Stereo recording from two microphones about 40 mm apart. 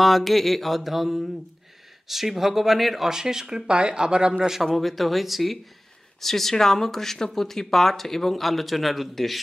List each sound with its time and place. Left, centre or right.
0.0 s a man's voice: centre
3.1 s speech: centre
4.3 s speech: centre
4.7 s a man's voice: centre